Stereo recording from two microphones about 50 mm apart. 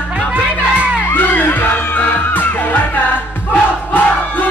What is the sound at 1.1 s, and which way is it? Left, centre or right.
Music, left.